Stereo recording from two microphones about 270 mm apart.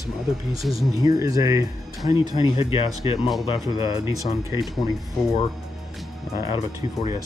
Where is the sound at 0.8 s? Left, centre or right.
Centre.